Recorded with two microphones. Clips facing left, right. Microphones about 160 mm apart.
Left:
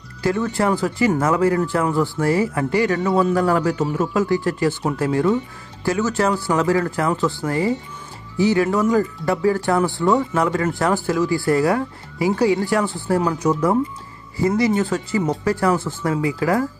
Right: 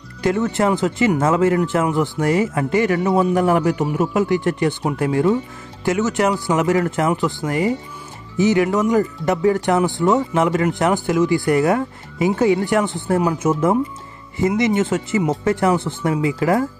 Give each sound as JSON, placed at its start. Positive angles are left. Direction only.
{"t": 0.2, "sound": "speech", "side_deg": -20}